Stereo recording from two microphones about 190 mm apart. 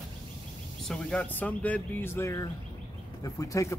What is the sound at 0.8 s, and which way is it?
Speech, 5° left (ahead or behind).